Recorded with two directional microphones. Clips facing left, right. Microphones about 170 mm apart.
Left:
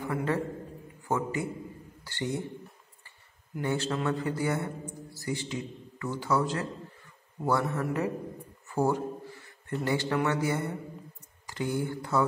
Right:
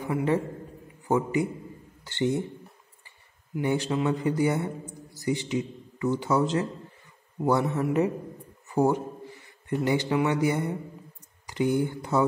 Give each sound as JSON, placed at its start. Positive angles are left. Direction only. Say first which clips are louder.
{"t": 0.0, "sound": "a man's voice", "louder": "right 4 dB", "side_deg": -15}
{"t": 3.5, "sound": "a man's voice", "louder": "right 4 dB", "side_deg": -15}